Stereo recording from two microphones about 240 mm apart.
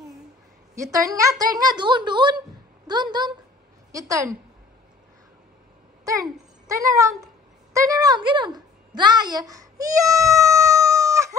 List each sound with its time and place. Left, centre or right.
0.9 s a woman's voice: centre
6.0 s a child's voice: centre
8.3 s a sound: centre